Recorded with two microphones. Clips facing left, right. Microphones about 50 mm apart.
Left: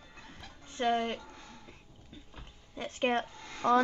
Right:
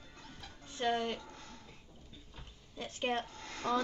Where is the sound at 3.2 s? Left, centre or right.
Left.